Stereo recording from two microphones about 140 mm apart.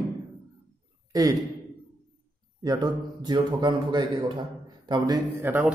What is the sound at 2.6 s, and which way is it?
A man's voice, 30° right (ahead or behind).